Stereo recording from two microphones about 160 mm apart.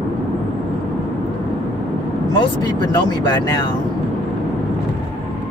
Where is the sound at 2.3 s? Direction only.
25° left (ahead or behind).